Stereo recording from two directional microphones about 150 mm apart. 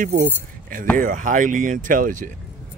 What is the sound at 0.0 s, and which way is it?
Speech, 70° right (ahead or behind).